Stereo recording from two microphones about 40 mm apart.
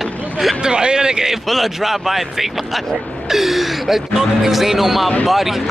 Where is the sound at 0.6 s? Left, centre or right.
Centre.